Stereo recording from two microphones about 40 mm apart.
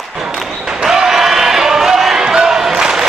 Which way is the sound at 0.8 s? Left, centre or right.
Centre.